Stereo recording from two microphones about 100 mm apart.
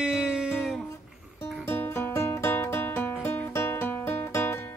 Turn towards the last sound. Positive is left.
turn(degrees=25)  # may be behind; listen again after turning